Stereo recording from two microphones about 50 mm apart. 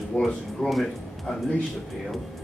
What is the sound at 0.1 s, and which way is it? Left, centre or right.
Speech, left.